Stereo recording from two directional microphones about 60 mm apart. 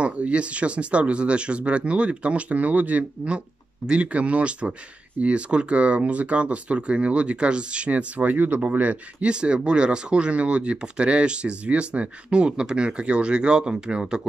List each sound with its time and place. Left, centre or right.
0.0 s speech: centre